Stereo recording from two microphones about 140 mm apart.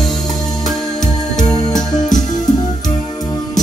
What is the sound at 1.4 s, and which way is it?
Music, 30° left (ahead or behind).